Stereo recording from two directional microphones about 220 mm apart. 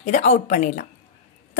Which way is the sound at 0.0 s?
30° left (ahead or behind).